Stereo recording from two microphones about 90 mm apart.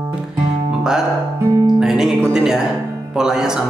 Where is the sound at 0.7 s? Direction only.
5° right (ahead or behind).